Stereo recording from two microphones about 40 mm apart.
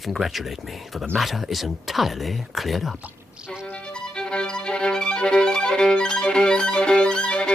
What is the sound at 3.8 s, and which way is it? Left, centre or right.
Music, left.